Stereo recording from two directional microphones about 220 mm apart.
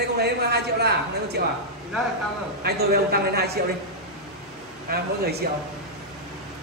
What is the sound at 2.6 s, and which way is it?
Speech, 45° right (ahead or behind).